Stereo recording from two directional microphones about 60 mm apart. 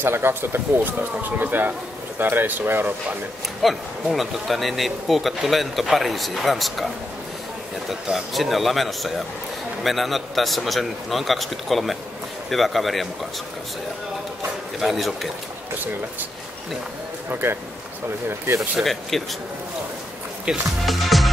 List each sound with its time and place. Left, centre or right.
0.0 s speech: right
3.6 s speech: centre
7.9 s speech: centre
14.8 s speech: centre
17.3 s speech: right
18.8 s speech: centre
20.5 s speech: centre
20.8 s music: centre